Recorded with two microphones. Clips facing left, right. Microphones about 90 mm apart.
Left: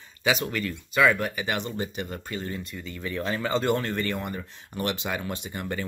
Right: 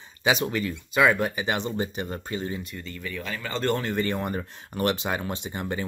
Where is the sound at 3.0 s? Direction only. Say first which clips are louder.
Left 6 dB; 30° left (ahead or behind).